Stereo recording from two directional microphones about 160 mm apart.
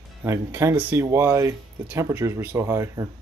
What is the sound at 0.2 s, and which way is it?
Speech, 15° right (ahead or behind).